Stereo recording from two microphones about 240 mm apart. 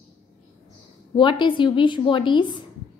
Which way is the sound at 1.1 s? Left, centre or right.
Centre.